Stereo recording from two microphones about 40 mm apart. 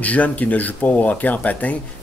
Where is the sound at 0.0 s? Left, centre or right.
Left.